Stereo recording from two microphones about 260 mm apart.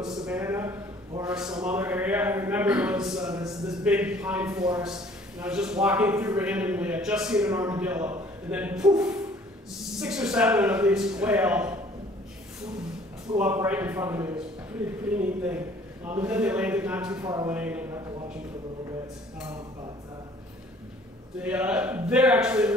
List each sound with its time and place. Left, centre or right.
0.0 s a man's voice: centre
13.4 s a man's voice: centre
21.4 s a man's voice: centre